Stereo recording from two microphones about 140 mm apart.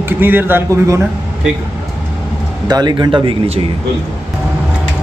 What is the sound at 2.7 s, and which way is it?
Speech, 30° right (ahead or behind).